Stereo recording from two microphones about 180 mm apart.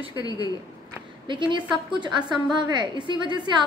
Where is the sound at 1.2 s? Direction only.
25° right (ahead or behind).